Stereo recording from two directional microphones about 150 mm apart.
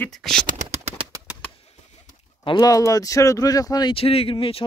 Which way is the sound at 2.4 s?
30° left (ahead or behind).